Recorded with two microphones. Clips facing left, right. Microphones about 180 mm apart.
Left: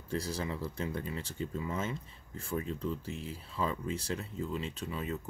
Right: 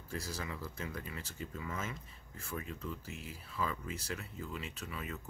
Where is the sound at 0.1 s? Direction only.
30° left (ahead or behind).